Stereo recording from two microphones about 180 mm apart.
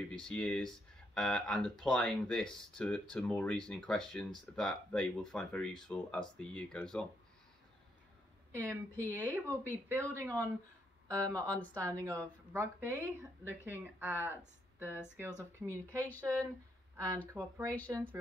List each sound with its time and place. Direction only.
0.1 s speech: 5° left (ahead or behind)
8.5 s speech: 15° right (ahead or behind)
11.5 s speech: 10° left (ahead or behind)
11.8 s speech: 15° right (ahead or behind)
17.6 s speech: 5° left (ahead or behind)